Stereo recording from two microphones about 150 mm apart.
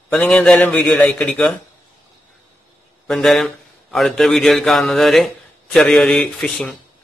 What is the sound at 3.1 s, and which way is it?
A man's voice, centre (ahead or behind).